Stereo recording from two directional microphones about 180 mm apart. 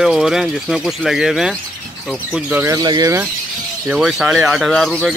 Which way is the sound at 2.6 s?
20° right (ahead or behind).